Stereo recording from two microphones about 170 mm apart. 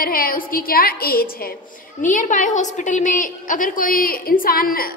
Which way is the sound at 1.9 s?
50° left (ahead or behind).